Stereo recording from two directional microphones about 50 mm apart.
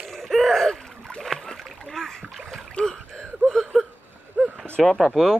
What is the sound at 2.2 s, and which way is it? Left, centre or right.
Boat, centre.